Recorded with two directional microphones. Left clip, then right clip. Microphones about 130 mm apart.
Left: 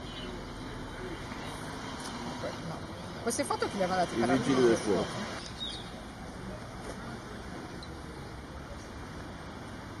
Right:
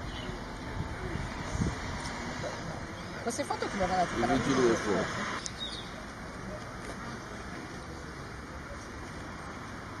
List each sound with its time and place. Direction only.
3.3 s speech: 40° left (ahead or behind)